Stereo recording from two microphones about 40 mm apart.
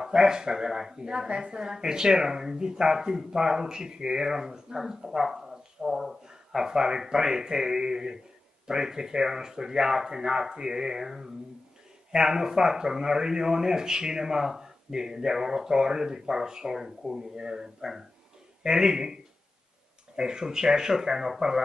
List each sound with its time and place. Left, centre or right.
0.0 s speech: centre
20.2 s speech: centre